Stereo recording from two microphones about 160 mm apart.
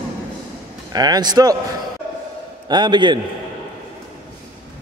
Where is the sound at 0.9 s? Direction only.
25° right (ahead or behind).